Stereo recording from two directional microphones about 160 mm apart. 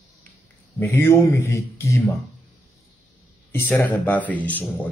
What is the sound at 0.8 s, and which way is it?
Speech, 15° left (ahead or behind).